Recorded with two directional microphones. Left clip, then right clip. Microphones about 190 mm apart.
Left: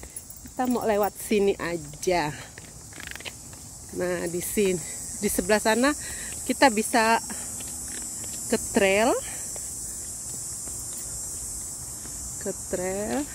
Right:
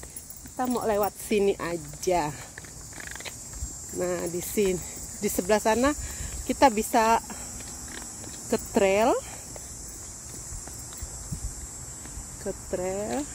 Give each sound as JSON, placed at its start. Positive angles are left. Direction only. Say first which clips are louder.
{"t": 0.6, "sound": "speech", "louder": "left 2 dB", "side_deg": 20}
{"t": 1.4, "sound": "speech", "louder": "left 1 dB", "side_deg": 10}
{"t": 4.0, "sound": "speech", "louder": "left 1 dB", "side_deg": 5}
{"t": 8.5, "sound": "speech", "louder": "left 1 dB", "side_deg": 0}
{"t": 12.7, "sound": "speech", "louder": "left 1 dB", "side_deg": 10}